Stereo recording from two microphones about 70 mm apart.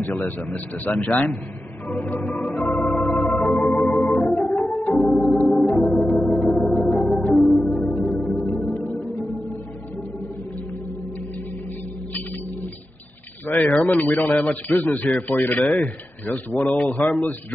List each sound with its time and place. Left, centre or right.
0.5 s speech: left
1.9 s organ: left
5.4 s music: centre
13.5 s speech: left